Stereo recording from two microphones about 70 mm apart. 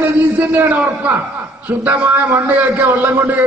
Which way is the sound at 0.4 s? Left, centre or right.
Right.